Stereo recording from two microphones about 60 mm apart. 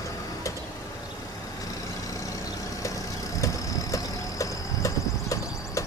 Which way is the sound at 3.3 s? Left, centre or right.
Left.